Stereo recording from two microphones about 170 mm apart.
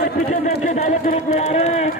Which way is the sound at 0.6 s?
40° left (ahead or behind).